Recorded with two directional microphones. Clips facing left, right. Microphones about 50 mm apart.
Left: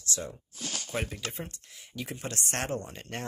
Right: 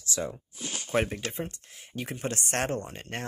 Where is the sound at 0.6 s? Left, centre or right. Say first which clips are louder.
Left 2 dB; centre.